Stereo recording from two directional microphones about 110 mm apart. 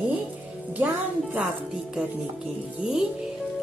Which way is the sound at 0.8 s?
15° right (ahead or behind).